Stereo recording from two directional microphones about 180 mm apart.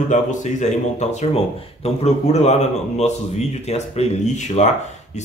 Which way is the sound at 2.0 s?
40° left (ahead or behind).